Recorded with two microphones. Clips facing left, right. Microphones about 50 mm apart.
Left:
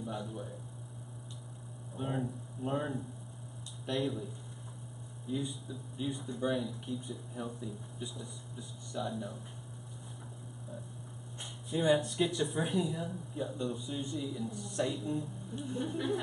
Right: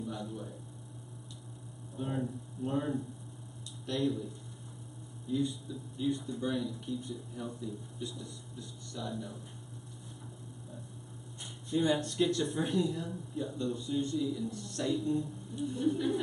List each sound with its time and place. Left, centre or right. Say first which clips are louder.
0.1 s a man's voice: even; centre
2.0 s speech: even; centre
3.8 s speech: right 1 dB; centre
5.3 s speech: right 4 dB; centre
11.7 s speech: left 1 dB; centre